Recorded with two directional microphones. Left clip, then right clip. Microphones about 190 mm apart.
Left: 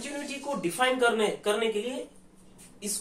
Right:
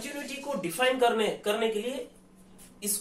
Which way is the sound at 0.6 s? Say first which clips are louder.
Even; 20° left (ahead or behind).